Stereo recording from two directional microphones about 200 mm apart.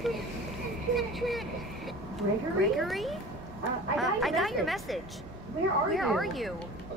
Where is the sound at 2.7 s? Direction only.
Centre (ahead or behind).